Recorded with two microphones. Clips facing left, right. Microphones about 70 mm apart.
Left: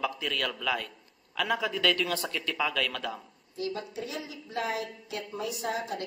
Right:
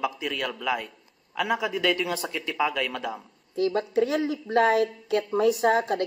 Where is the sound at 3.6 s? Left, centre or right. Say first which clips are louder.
Right 11 dB; right.